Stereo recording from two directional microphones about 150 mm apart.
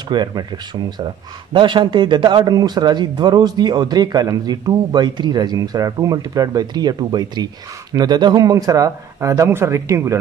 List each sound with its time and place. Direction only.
0.1 s speech: 30° right (ahead or behind)